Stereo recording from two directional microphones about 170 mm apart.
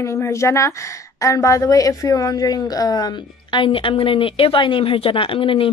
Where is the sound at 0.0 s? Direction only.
15° left (ahead or behind).